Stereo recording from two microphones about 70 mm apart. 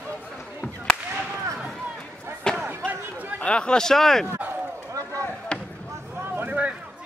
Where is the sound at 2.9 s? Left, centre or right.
Right.